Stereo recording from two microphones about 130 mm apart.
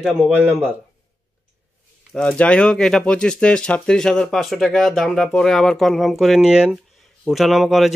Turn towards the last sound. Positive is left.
turn(degrees=0)  # may be behind; listen again after turning